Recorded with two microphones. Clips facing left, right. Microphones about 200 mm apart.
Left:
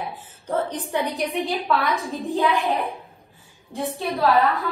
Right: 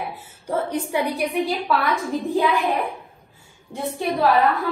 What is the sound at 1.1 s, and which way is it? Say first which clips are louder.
Speech: right 2 dB; centre (ahead or behind).